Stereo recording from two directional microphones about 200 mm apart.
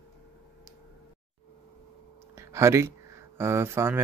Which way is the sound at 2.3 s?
15° right (ahead or behind).